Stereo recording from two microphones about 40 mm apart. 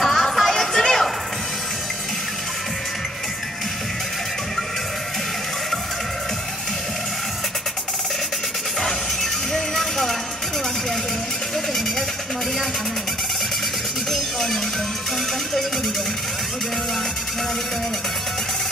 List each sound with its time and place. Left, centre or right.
0.0 s music: centre
8.8 s music: centre
14.1 s music: centre